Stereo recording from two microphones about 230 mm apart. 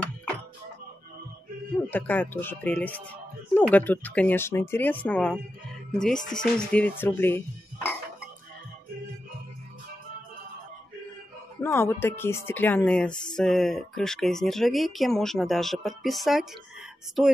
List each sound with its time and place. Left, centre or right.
1.9 s speech: centre
11.6 s speech: centre